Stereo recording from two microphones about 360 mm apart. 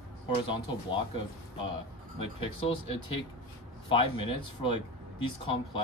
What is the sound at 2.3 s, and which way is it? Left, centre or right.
Speech, centre.